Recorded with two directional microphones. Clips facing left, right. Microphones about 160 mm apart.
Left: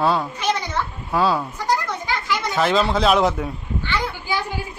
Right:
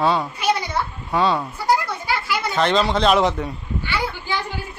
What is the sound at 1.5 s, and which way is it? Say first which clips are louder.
Children playing: right 2 dB; 10° right (ahead or behind).